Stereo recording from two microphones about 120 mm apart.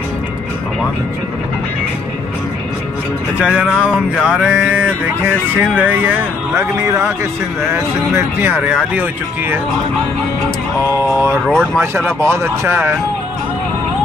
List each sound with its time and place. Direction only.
3.3 s music: 10° right (ahead or behind); by 7.2 s 25° right (ahead or behind)
7.6 s speech: 20° right (ahead or behind)
8.7 s music: 15° right (ahead or behind)
11.5 s speech: 20° right (ahead or behind)